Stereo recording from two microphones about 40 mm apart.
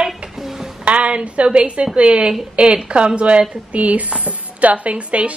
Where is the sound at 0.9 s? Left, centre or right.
Right.